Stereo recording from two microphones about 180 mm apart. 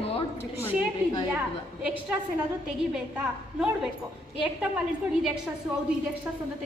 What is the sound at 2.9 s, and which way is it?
Speech, 5° right (ahead or behind).